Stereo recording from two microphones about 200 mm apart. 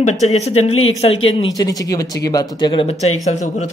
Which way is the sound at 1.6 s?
15° left (ahead or behind).